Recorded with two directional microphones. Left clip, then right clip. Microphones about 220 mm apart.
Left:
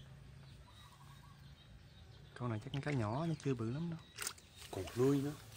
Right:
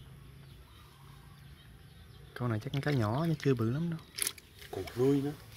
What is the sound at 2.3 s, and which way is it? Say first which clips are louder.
Speech: right 7 dB; 15° right (ahead or behind).